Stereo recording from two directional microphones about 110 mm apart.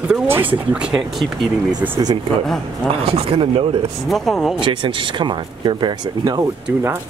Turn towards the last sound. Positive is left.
turn(degrees=-35)  # may be behind; listen again after turning